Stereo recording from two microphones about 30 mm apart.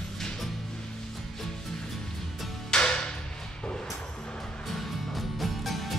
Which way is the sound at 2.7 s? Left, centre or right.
Left.